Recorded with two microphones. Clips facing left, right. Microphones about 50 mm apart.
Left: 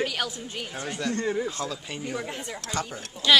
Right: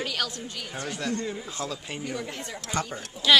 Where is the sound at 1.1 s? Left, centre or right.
Left.